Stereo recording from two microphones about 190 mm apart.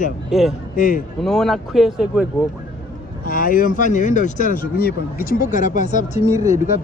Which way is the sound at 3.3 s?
45° left (ahead or behind).